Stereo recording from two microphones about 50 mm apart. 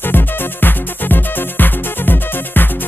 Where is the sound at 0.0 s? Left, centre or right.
Left.